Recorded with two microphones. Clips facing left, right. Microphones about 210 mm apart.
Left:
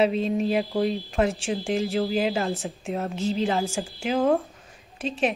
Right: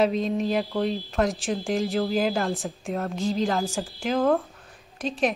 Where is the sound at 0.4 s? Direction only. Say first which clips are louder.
Left 1 dB; 10° left (ahead or behind).